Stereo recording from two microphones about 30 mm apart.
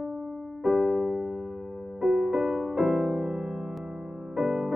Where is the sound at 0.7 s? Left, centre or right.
Centre.